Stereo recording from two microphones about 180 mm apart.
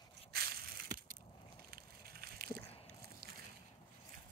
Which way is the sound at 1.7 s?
60° right (ahead or behind).